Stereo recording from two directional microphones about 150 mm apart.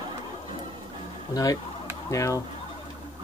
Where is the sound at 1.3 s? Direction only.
25° left (ahead or behind).